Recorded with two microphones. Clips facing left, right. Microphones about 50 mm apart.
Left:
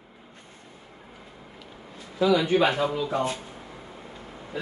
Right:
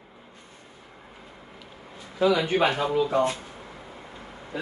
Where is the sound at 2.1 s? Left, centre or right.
Right.